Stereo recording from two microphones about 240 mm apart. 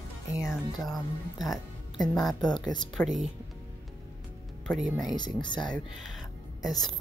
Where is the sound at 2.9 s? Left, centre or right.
Centre.